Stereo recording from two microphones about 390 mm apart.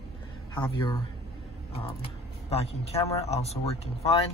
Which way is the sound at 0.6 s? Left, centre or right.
Centre.